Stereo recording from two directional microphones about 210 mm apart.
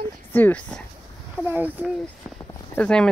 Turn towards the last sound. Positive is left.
turn(degrees=5)  # may be behind; listen again after turning